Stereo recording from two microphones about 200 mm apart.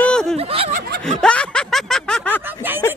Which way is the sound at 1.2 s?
5° left (ahead or behind).